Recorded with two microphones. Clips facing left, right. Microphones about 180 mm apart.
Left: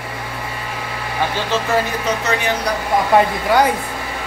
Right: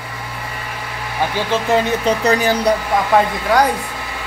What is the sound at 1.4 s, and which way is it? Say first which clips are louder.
Speech: right 3 dB; 15° right (ahead or behind).